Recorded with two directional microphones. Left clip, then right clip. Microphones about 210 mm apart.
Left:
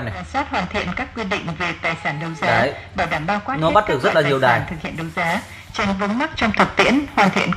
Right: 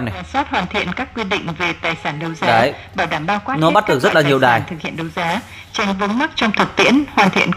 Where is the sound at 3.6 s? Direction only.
55° right (ahead or behind).